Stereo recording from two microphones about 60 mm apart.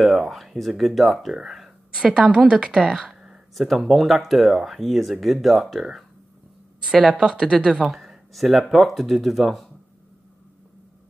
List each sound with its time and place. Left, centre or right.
0.0 s speech: centre
7.0 s speech: centre